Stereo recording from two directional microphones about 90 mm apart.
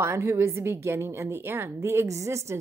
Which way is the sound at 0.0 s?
30° right (ahead or behind).